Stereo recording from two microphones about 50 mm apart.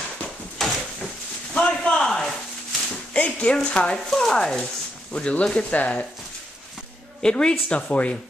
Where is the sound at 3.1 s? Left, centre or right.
Left.